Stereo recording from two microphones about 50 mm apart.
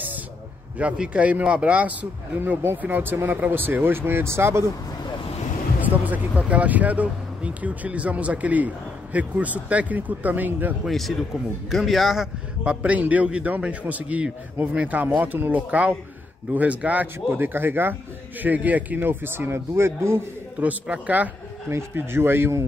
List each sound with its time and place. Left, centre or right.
0.9 s a man's voice: right
5.8 s speech: right
10.9 s a man's voice: centre
12.6 s a man's voice: right
18.4 s speech: right
18.9 s speech: right
20.6 s speech: right
21.6 s speech: right